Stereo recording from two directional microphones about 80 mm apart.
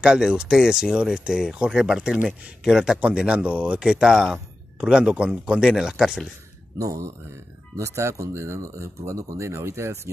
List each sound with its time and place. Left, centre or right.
0.0 s speech: centre
6.8 s speech: right